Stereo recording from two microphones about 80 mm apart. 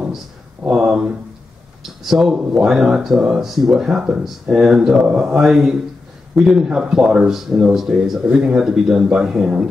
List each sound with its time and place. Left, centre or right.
0.7 s speech: centre